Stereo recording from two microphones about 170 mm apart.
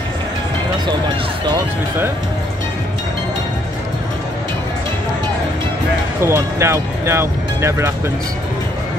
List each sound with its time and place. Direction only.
6.2 s speech: 15° right (ahead or behind)